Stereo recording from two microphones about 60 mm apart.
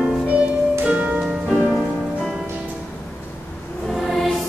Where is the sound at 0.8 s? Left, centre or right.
Right.